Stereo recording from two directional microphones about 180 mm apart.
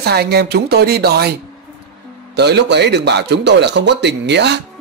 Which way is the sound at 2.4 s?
70° right (ahead or behind).